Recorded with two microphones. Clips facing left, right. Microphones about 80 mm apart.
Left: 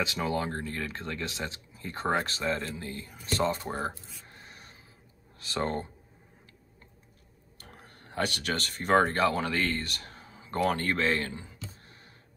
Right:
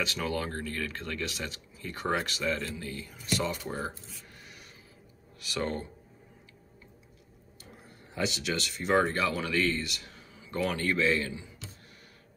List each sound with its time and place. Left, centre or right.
0.0 s speech: left
4.3 s music: left
5.4 s speech: left
7.5 s speech: left